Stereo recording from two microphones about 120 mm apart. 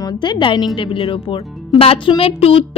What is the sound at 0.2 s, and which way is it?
A woman's voice, 40° left (ahead or behind).